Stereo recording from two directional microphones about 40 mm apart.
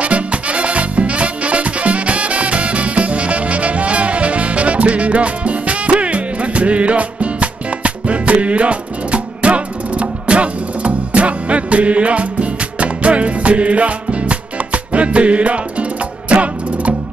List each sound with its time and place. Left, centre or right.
0.0 s music: right